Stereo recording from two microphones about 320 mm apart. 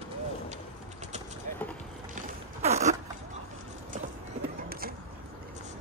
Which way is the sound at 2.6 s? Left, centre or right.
Right.